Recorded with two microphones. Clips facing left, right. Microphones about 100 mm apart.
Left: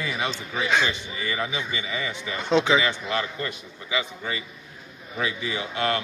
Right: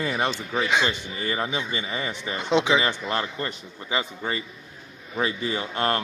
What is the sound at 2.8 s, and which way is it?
A man's voice, 40° right (ahead or behind).